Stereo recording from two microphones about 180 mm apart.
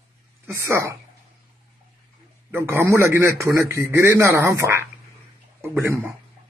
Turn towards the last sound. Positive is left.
turn(degrees=-15)  # may be behind; listen again after turning